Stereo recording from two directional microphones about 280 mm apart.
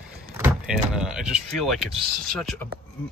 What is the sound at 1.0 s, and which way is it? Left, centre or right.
Speech, centre.